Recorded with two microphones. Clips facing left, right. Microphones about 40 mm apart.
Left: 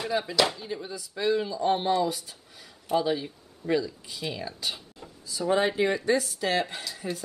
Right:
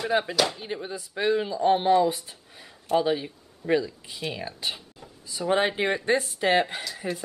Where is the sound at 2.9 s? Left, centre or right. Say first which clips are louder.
Right 2 dB; centre.